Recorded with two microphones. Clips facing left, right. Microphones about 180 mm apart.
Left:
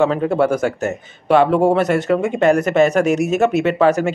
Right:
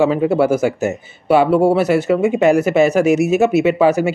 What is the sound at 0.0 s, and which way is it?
Speech, 10° right (ahead or behind).